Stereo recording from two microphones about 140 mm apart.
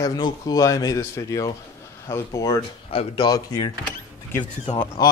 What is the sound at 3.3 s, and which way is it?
Speech, 30° left (ahead or behind).